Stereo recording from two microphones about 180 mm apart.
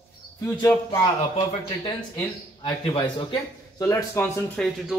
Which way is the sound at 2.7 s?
25° left (ahead or behind).